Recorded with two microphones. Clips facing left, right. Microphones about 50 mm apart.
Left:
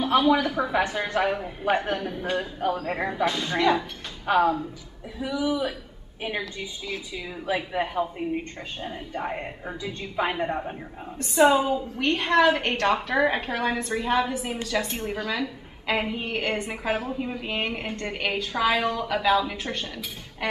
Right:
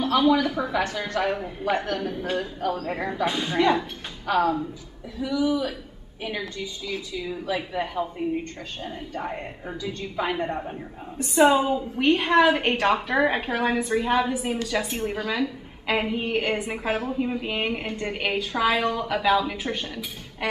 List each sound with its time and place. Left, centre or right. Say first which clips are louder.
0.2 s a woman's voice: right 1 dB; centre
2.0 s a woman's voice: right 1 dB; centre
3.3 s speech: right 2 dB; centre
4.3 s a woman's voice: left 1 dB; left
11.1 s a woman's voice: right 1 dB; centre